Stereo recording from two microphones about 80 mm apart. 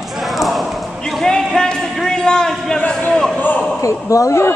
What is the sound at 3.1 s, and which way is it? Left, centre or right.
Basketball bounce, centre.